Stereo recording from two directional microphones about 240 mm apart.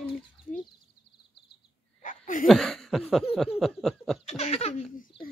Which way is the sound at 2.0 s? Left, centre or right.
Left.